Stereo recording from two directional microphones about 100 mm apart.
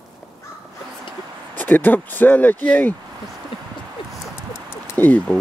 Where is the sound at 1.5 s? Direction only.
20° left (ahead or behind).